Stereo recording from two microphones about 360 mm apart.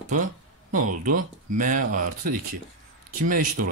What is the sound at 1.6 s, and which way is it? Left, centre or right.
Speech, right.